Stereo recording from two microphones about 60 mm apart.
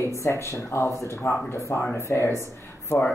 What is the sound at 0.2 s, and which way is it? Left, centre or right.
Speech, left.